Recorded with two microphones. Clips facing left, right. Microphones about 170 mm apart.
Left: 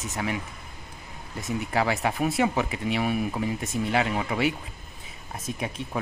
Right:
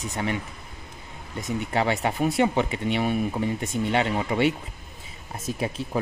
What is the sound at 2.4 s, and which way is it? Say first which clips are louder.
Speech: right 2 dB; 30° right (ahead or behind).